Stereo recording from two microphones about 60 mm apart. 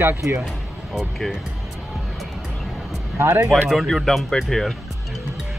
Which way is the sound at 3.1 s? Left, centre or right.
Right.